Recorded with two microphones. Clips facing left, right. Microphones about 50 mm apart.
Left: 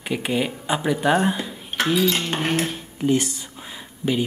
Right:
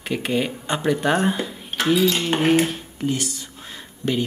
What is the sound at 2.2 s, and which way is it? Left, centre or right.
Cutlery, centre.